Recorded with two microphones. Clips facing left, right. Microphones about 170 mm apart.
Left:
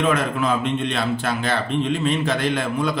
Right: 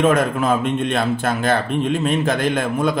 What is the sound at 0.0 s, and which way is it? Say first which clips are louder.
Speech: right 4 dB; 45° right (ahead or behind).